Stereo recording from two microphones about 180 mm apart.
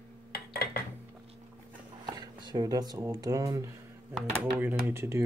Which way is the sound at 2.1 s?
25° right (ahead or behind).